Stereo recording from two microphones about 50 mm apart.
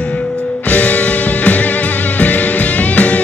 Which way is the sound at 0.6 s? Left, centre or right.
Left.